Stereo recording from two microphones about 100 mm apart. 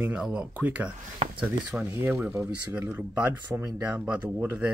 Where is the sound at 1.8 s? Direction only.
25° right (ahead or behind).